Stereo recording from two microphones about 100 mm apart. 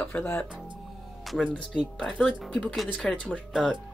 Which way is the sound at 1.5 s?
5° left (ahead or behind).